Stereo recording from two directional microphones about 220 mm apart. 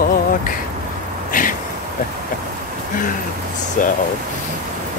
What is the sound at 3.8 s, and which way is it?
Speech, 35° left (ahead or behind).